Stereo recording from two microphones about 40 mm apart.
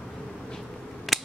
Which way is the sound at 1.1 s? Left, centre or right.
Centre.